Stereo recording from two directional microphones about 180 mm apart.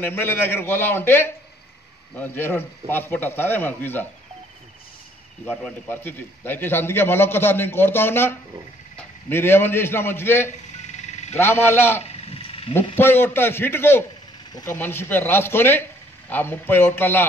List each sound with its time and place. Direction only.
0.0 s a man's voice: 10° left (ahead or behind)
5.4 s a man's voice: 10° left (ahead or behind)
11.0 s a sound: 40° left (ahead or behind)
11.3 s a man's voice: 15° left (ahead or behind)
12.3 s a sound: 30° left (ahead or behind)
12.9 s a man's voice: 10° left (ahead or behind)